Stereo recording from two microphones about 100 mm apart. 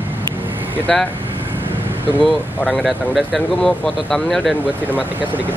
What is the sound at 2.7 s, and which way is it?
Speech, 15° right (ahead or behind).